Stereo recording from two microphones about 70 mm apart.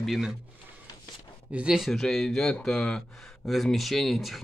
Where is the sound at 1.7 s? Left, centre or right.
Centre.